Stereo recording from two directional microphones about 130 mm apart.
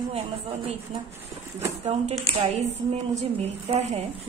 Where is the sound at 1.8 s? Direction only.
55° right (ahead or behind).